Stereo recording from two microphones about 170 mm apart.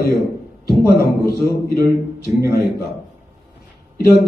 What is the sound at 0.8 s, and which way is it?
A man's voice, 65° left (ahead or behind).